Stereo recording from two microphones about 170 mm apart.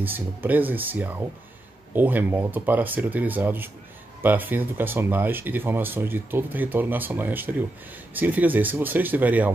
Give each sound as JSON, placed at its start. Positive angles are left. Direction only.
{"t": 0.0, "sound": "speech", "side_deg": -10}